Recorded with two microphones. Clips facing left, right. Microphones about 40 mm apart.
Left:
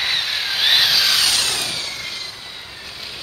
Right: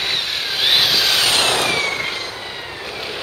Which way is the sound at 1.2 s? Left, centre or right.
Right.